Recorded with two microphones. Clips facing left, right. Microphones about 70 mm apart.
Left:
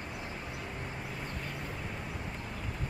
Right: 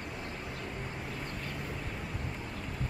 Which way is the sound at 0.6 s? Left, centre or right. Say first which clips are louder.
Right 1 dB; centre.